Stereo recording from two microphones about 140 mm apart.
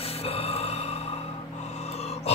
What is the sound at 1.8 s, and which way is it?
Gasp, 50° left (ahead or behind).